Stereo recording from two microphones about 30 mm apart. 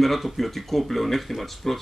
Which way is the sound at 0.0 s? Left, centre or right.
Centre.